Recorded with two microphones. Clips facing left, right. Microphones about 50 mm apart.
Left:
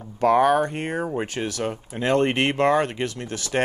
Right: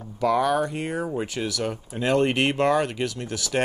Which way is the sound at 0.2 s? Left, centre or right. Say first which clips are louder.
Left 4 dB; left.